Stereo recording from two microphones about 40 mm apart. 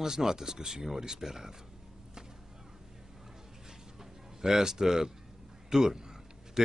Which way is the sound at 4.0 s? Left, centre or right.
Centre.